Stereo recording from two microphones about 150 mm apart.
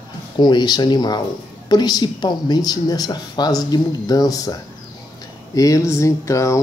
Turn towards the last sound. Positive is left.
turn(degrees=20)  # may be behind; listen again after turning